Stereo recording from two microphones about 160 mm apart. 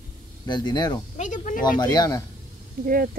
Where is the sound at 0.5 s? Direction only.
25° left (ahead or behind).